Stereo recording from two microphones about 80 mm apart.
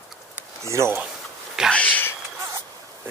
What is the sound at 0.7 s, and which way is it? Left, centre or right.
Speech, right.